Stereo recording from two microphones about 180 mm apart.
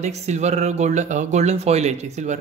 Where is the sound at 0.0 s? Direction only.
40° right (ahead or behind).